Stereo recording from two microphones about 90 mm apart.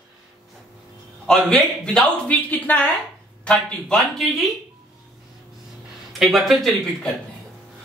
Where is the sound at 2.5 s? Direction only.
20° left (ahead or behind); by 4.5 s centre (ahead or behind).